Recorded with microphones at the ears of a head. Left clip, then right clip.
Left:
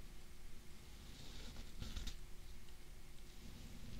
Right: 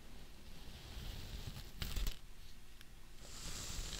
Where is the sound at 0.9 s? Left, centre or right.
Right.